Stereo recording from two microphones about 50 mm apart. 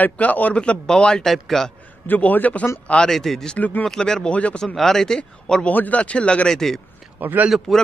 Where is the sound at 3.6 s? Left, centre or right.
Left.